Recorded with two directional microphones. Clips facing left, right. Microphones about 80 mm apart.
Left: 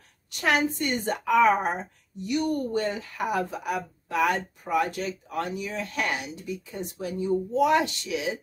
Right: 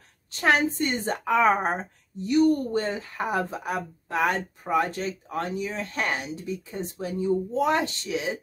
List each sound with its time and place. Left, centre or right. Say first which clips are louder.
0.3 s speech: right 2 dB; right